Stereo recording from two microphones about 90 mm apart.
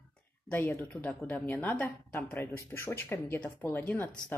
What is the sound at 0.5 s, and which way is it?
A woman's voice, 20° left (ahead or behind).